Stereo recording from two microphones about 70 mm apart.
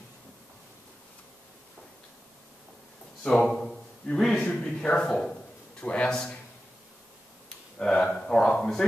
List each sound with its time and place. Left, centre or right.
3.3 s a man's voice: centre
7.8 s speech: centre